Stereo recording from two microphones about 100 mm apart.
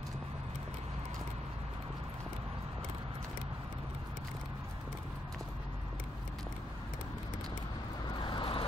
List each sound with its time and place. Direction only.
8.2 s vehicle: 55° left (ahead or behind)